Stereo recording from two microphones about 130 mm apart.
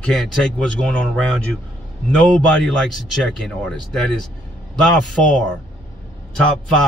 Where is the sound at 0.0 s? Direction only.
5° left (ahead or behind).